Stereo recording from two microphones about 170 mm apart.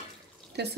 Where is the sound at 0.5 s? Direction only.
80° right.